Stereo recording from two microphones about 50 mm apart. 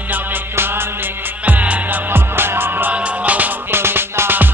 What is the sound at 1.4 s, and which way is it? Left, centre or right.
Music, right.